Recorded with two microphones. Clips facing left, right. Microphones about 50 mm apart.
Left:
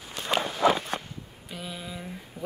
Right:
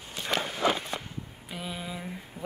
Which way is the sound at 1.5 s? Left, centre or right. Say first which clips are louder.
Right 1 dB; centre.